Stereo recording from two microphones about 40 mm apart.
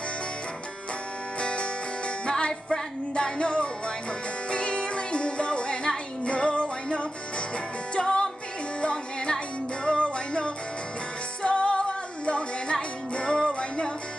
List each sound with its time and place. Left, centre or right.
1.4 s music: left